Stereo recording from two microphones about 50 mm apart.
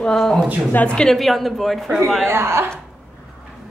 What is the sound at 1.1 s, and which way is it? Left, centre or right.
Speech, centre.